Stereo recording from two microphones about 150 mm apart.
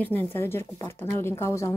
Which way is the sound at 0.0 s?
10° left (ahead or behind).